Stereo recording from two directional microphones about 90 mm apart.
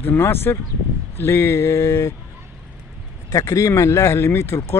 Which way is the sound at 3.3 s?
40° left (ahead or behind).